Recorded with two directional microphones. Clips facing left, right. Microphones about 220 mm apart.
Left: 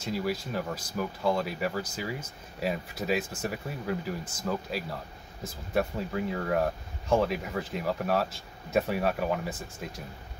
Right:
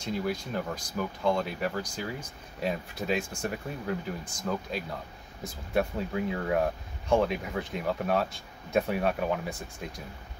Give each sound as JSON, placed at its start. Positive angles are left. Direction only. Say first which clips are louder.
{"t": 0.0, "sound": "speech", "louder": "even", "side_deg": 5}